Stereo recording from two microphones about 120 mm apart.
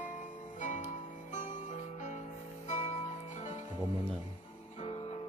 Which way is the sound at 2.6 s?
75° left (ahead or behind).